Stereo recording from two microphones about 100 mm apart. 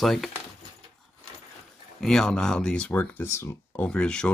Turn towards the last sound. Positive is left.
turn(degrees=10)  # may be behind; listen again after turning